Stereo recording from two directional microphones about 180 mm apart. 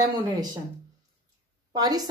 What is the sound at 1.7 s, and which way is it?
Speech, 20° right (ahead or behind).